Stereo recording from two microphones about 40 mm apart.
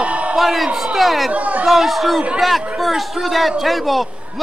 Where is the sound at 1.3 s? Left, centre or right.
Right.